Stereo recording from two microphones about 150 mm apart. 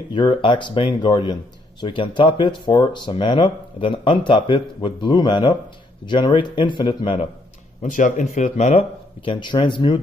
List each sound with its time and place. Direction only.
0.1 s speech: 35° left (ahead or behind)
7.8 s speech: 60° left (ahead or behind); by 9.9 s 30° left (ahead or behind)